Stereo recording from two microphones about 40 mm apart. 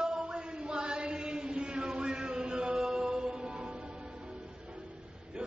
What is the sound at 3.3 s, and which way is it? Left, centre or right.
Music, right.